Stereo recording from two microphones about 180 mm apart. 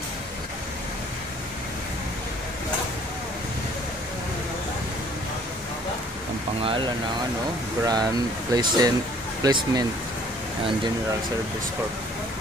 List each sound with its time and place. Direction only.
7.8 s speech: 20° right (ahead or behind)